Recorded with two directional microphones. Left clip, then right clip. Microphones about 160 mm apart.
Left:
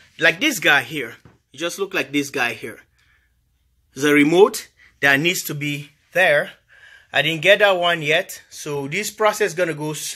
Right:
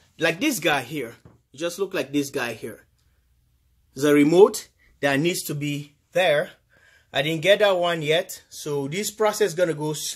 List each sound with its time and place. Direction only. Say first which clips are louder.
0.1 s speech: left 6 dB; 5° right (ahead or behind)
3.9 s speech: left 2 dB; 5° left (ahead or behind)